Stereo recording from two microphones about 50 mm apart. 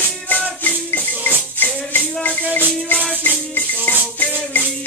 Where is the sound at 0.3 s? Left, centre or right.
Left.